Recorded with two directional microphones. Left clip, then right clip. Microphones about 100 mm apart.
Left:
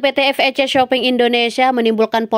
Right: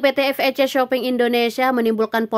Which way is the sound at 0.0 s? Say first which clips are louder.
Left 3 dB; 25° left (ahead or behind).